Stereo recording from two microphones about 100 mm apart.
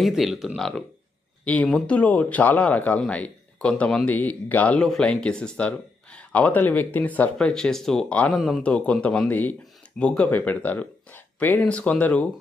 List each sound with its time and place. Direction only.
0.0 s speech: centre (ahead or behind)
1.4 s speech: 15° left (ahead or behind)